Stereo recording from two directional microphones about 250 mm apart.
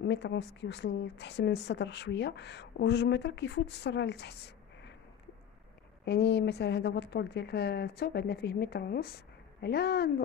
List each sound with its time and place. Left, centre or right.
0.0 s a woman's voice: left
6.0 s speech: left